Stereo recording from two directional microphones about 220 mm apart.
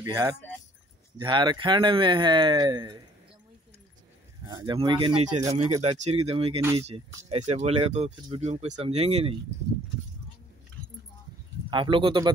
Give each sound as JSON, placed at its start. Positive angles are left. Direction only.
{"t": 0.0, "sound": "speech", "side_deg": -15}
{"t": 4.5, "sound": "speech", "side_deg": -20}
{"t": 11.7, "sound": "speech", "side_deg": -20}